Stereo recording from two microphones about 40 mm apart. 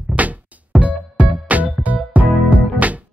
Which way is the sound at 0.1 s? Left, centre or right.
Right.